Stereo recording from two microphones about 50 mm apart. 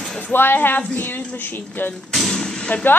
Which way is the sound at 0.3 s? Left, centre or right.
Left.